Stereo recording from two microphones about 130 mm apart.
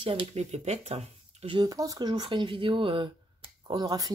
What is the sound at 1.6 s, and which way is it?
Speech, 25° right (ahead or behind).